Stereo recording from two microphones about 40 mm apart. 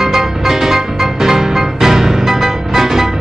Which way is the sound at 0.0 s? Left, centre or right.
Centre.